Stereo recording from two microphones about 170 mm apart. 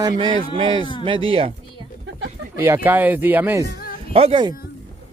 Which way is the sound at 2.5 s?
10° right (ahead or behind).